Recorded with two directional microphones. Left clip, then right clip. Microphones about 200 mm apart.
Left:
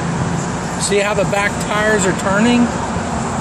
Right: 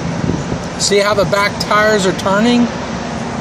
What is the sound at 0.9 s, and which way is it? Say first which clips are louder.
Speech: right 4 dB; 25° right (ahead or behind).